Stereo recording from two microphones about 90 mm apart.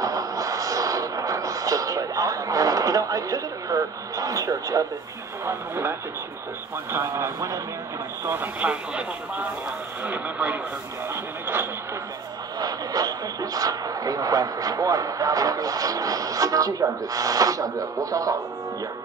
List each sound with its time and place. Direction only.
0.0 s a sound: 40° right (ahead or behind)
5.4 s speech: 30° right (ahead or behind)
8.5 s speech: 15° right (ahead or behind)
12.5 s speech: 45° right (ahead or behind)